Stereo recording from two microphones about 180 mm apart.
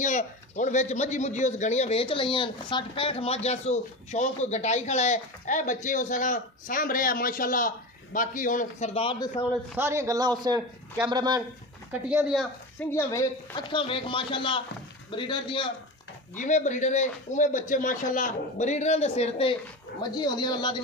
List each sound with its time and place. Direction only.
0.0 s speech: 45° left (ahead or behind)
9.8 s a man's voice: 15° right (ahead or behind)
11.9 s speech: 5° right (ahead or behind)
12.9 s speech: 15° left (ahead or behind)
16.3 s speech: 45° left (ahead or behind)
20.0 s speech: 25° left (ahead or behind)